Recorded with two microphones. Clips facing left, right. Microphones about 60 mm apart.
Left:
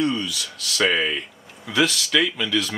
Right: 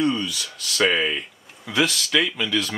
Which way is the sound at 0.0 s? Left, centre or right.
Centre.